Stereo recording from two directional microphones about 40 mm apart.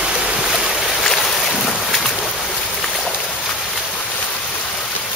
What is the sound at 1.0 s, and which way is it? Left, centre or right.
Boat, centre.